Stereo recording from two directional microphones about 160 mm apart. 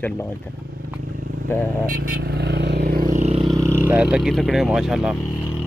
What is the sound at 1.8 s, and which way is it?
Vehicle, 65° right (ahead or behind).